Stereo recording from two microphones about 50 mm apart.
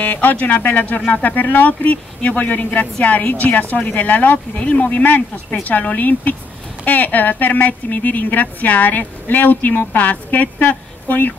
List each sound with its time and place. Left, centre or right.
0.0 s speech: left